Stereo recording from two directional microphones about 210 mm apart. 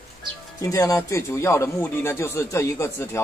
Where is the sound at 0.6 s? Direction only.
15° left (ahead or behind).